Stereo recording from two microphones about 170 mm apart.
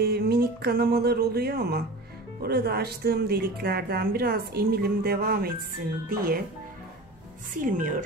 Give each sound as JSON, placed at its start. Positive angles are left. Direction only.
{"t": 0.0, "sound": "speech", "side_deg": -70}
{"t": 7.6, "sound": "speech", "side_deg": -50}